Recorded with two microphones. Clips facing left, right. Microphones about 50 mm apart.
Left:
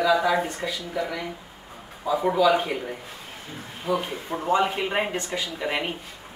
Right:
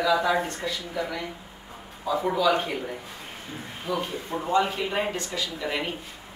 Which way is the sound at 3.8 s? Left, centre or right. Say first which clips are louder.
Left 3 dB; centre.